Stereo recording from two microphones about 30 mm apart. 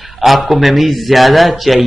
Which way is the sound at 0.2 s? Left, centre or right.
Centre.